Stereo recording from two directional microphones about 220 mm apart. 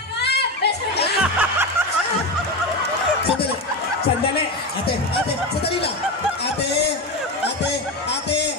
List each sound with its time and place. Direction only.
0.2 s children playing: 50° left (ahead or behind)
1.4 s music: 10° right (ahead or behind)
7.4 s music: 50° left (ahead or behind)